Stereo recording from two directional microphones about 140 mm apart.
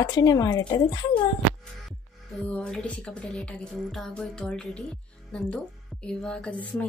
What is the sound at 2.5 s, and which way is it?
Music, 5° left (ahead or behind).